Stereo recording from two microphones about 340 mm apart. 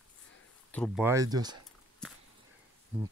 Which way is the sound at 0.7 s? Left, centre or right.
Centre.